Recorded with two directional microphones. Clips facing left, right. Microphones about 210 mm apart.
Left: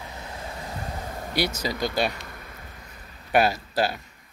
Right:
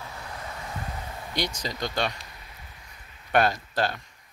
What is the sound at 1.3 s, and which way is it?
Speech, 10° left (ahead or behind).